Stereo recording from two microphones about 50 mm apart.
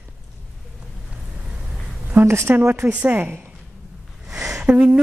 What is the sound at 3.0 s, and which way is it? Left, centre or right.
Speech, right.